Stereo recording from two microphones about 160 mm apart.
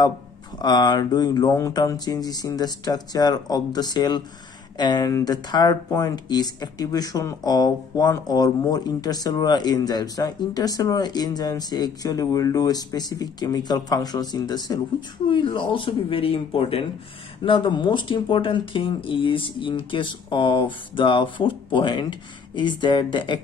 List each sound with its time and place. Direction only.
0.6 s speech: 25° left (ahead or behind)